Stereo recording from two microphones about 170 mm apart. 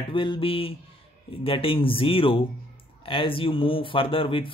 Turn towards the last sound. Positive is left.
turn(degrees=30)  # may be behind; listen again after turning